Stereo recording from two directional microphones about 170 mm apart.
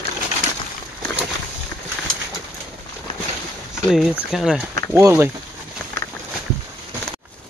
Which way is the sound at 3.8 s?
5° right (ahead or behind).